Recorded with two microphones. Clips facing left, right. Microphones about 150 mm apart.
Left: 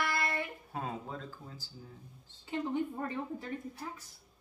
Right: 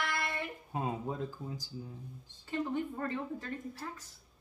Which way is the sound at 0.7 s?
15° right (ahead or behind).